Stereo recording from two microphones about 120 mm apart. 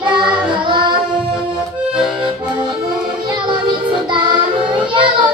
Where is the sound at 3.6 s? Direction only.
40° right (ahead or behind).